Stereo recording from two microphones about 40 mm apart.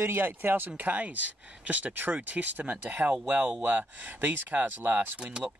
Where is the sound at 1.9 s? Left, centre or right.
Right.